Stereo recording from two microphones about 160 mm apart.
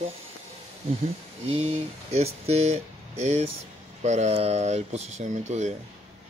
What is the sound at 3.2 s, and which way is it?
Speech, 45° right (ahead or behind).